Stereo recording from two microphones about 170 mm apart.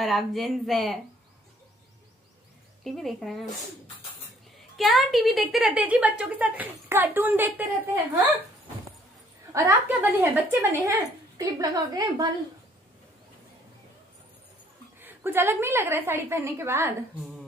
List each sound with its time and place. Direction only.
0.0 s speech: centre (ahead or behind)
2.8 s speech: centre (ahead or behind)
4.7 s a woman's voice: centre (ahead or behind)
9.5 s speech: 15° right (ahead or behind)
15.0 s a woman's voice: 10° right (ahead or behind)